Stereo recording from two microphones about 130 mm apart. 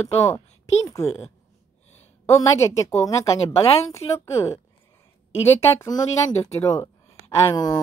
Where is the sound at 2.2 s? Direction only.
25° left (ahead or behind).